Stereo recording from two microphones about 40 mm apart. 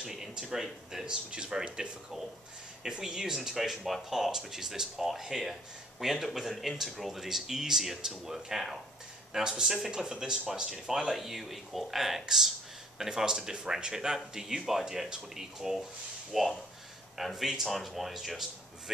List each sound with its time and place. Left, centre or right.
0.1 s speech: centre